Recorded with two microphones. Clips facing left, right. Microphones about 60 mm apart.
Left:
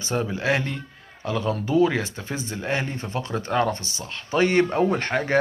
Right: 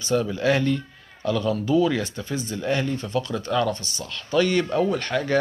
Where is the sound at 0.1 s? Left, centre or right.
Left.